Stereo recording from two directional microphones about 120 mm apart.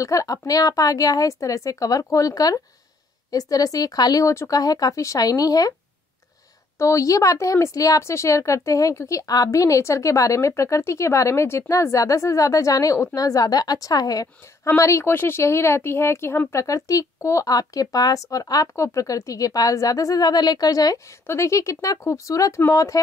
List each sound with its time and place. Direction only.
0.0 s a woman's voice: 30° left (ahead or behind)
6.8 s a woman's voice: 25° left (ahead or behind)